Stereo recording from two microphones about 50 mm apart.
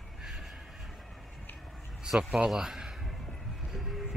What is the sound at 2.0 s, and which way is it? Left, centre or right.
Speech, centre.